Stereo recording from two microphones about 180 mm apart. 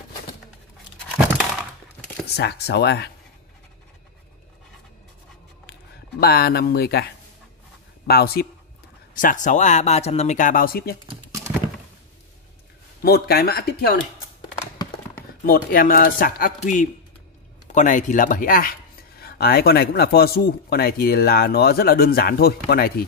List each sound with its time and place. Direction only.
1.1 s crumpling: 10° right (ahead or behind)
2.3 s speech: 65° left (ahead or behind)
5.7 s speech: 60° left (ahead or behind)
8.1 s speech: 60° left (ahead or behind)
9.1 s speech: 45° left (ahead or behind)
13.0 s speech: 60° left (ahead or behind)
15.4 s speech: 55° left (ahead or behind)